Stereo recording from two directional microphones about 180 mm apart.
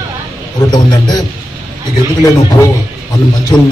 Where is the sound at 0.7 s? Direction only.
20° left (ahead or behind).